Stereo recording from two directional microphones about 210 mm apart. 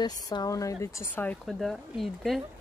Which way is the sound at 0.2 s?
20° left (ahead or behind).